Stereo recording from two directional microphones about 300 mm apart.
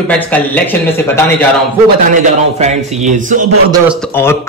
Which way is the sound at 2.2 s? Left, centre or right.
Right.